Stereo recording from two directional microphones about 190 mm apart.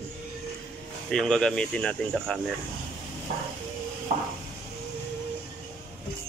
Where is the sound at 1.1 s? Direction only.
5° left (ahead or behind).